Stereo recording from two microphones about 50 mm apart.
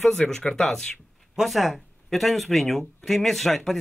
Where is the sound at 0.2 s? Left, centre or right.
Centre.